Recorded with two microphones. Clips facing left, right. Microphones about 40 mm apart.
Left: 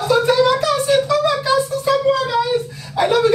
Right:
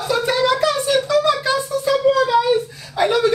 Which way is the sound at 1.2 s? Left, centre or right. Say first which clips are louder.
Even; left.